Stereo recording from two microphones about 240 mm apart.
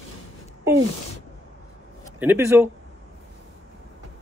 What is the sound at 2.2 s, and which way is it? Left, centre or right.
Speech, centre.